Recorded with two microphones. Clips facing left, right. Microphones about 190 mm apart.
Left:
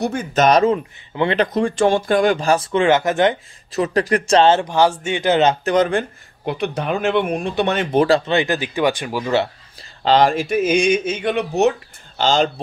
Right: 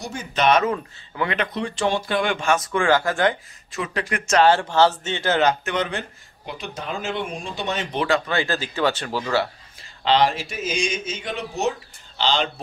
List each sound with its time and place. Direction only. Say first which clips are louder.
0.0 s speech: left 5 dB; 55° left (ahead or behind)
0.7 s speech: left 7 dB; 25° left (ahead or behind)
3.7 s a man's voice: left 9 dB; 40° left (ahead or behind); by 5.6 s 20° left (ahead or behind)
5.7 s speech: left 9 dB; 45° left (ahead or behind)
8.3 s speech: left 5 dB; 20° left (ahead or behind)
9.8 s speech: left 4 dB; 45° left (ahead or behind); by 11.7 s 65° left (ahead or behind)
12.2 s speech: left 6 dB; 45° left (ahead or behind)